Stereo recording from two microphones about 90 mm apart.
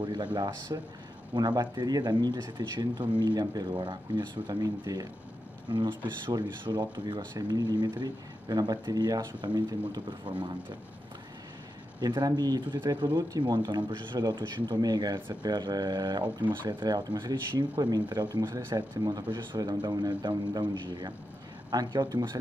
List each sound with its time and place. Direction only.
0.0 s speech: 55° right (ahead or behind)
5.7 s speech: 60° right (ahead or behind)
10.2 s speech: 65° right (ahead or behind)
12.0 s speech: 50° right (ahead or behind)
18.8 s speech: 45° right (ahead or behind)